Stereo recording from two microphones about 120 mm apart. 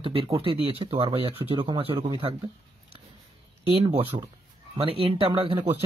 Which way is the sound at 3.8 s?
55° right (ahead or behind).